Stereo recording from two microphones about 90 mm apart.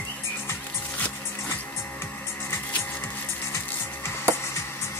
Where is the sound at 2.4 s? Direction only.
25° left (ahead or behind).